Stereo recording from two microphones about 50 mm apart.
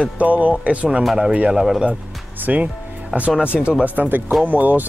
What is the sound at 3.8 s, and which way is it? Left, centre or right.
Speech, right.